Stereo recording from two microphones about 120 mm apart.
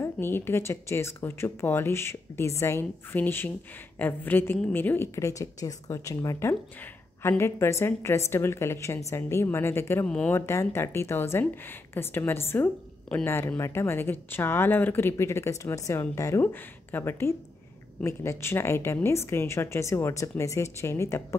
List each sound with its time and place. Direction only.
0.0 s a woman's voice: 20° left (ahead or behind)
10.0 s a woman's voice: 10° left (ahead or behind)
10.3 s a woman's voice: 20° left (ahead or behind)